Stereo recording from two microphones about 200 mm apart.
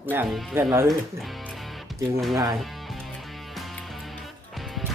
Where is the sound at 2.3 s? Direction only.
15° right (ahead or behind).